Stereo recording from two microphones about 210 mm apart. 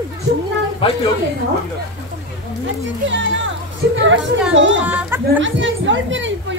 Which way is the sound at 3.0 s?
60° right (ahead or behind).